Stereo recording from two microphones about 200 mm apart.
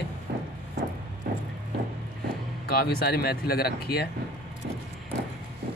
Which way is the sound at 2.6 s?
50° left (ahead or behind).